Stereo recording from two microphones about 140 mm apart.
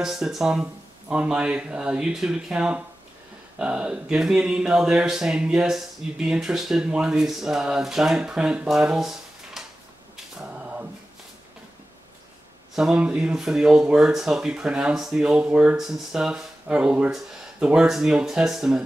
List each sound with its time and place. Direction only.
0.0 s speech: 5° right (ahead or behind)
10.1 s a sound: 10° right (ahead or behind)
12.7 s speech: 5° right (ahead or behind)